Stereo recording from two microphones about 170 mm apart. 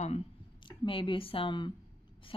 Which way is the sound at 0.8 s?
30° left (ahead or behind).